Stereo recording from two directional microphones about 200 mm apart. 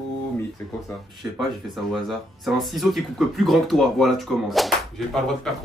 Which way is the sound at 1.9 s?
Centre (ahead or behind).